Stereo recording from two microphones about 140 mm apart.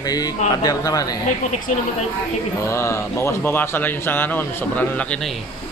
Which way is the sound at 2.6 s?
20° left (ahead or behind).